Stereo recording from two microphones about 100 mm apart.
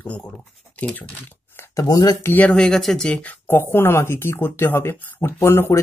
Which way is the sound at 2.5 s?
5° left (ahead or behind).